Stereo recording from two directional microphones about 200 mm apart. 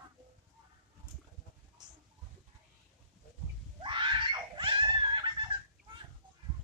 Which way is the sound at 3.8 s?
25° right (ahead or behind).